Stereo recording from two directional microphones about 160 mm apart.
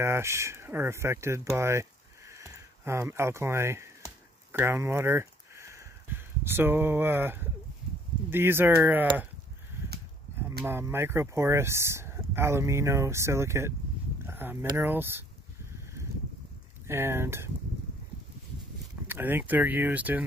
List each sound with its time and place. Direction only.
0.0 s speech: 15° right (ahead or behind)
4.5 s a sound: 15° right (ahead or behind)
8.3 s speech: 15° right (ahead or behind)
10.6 s speech: 15° right (ahead or behind)
14.2 s a sound: 15° right (ahead or behind)
14.8 s speech: 15° right (ahead or behind)
16.8 s speech: 15° right (ahead or behind)
19.0 s speech: 10° right (ahead or behind)